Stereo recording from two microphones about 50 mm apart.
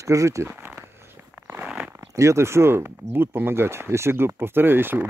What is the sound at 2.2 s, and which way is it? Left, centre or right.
Speech, right.